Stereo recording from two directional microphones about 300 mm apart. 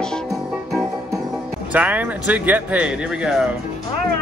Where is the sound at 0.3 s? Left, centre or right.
Centre.